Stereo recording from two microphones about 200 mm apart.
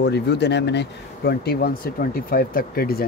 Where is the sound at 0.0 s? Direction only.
55° left (ahead or behind).